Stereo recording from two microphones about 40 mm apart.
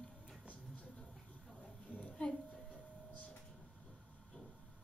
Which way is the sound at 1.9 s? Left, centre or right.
Left.